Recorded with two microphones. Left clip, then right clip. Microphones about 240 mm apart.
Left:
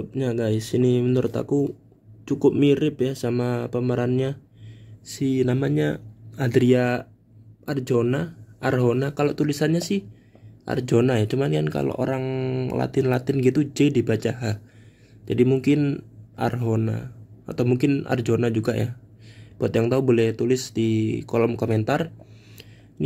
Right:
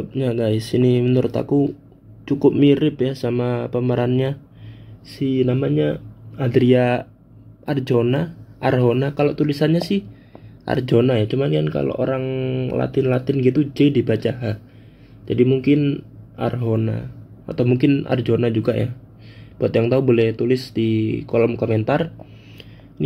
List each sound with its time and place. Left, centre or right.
0.0 s speech: centre
5.2 s speech: left